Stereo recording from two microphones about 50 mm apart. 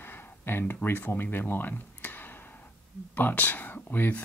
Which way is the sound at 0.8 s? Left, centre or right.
Left.